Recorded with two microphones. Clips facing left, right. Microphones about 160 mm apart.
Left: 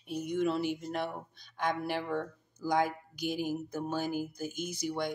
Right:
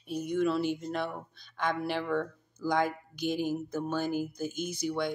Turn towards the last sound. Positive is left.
turn(degrees=15)  # may be behind; listen again after turning